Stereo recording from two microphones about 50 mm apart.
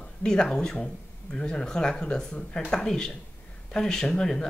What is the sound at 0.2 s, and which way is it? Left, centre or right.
Speech, centre.